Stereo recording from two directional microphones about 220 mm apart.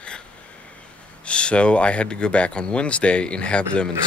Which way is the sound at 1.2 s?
5° left (ahead or behind).